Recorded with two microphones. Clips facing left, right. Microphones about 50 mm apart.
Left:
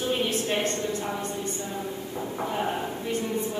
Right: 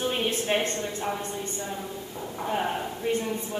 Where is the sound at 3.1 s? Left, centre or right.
Right.